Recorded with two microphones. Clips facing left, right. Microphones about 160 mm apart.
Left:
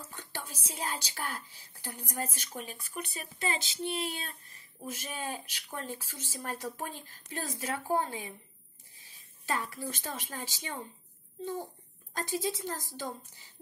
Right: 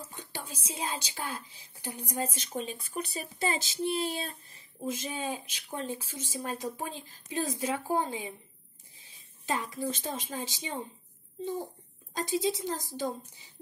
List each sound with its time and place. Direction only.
0.1 s a woman's voice: 15° right (ahead or behind); by 4.4 s 35° right (ahead or behind)
4.7 s speech: 20° right (ahead or behind)
12.1 s speech: 15° right (ahead or behind)